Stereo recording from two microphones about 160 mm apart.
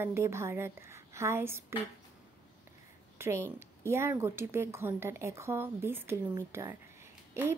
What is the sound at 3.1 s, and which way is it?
Speech, 15° right (ahead or behind).